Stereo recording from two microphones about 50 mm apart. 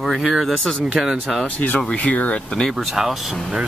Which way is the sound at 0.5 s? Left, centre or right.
Centre.